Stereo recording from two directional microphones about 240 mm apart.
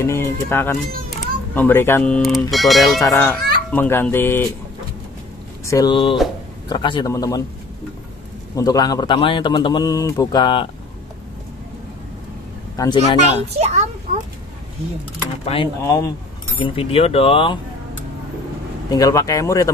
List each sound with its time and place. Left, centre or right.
0.0 s speech: centre
5.7 s speech: centre
8.5 s speech: centre
12.7 s speech: centre
13.3 s a child's voice: right
15.4 s speech: left
18.9 s speech: centre